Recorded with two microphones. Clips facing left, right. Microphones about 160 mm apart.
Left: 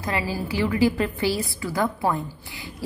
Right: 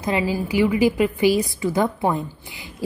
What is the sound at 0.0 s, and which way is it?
A woman's voice, 20° right (ahead or behind).